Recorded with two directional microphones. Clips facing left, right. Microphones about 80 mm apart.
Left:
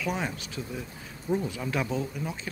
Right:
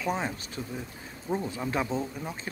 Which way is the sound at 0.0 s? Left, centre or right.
Right.